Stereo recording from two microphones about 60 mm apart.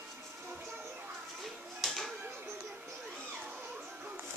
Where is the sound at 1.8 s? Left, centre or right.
Centre.